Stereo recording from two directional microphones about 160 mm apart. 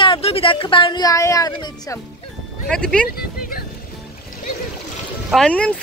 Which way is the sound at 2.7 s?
5° left (ahead or behind).